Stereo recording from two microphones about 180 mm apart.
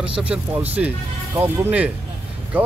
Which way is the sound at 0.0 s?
5° right (ahead or behind).